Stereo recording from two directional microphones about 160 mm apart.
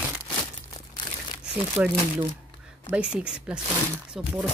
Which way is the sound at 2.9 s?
5° right (ahead or behind).